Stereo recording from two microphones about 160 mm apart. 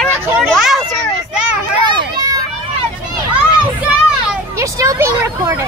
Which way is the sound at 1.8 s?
25° right (ahead or behind).